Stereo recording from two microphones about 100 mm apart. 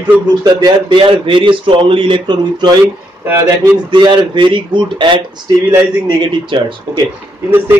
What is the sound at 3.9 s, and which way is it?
A man's voice, 55° right (ahead or behind).